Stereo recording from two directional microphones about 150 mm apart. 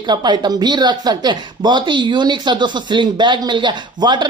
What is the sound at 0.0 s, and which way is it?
Speech, 30° right (ahead or behind).